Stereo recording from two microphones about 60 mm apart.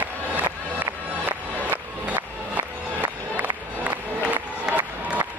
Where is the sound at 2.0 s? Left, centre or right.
Right.